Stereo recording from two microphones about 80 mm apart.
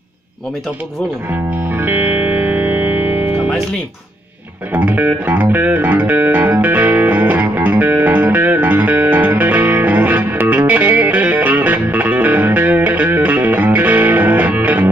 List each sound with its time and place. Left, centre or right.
1.7 s music: right
4.7 s music: right